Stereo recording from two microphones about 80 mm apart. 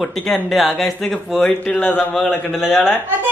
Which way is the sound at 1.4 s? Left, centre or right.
Left.